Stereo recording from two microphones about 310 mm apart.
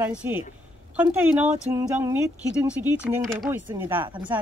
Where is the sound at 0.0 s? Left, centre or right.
Centre.